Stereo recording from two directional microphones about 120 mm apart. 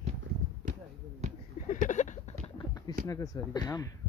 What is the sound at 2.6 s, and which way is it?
Speech, 30° left (ahead or behind).